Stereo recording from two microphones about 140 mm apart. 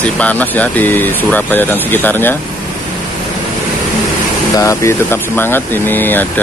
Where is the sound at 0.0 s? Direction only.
10° left (ahead or behind).